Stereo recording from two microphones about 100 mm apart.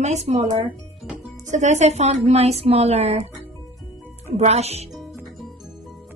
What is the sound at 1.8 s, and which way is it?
Speech, 90° right.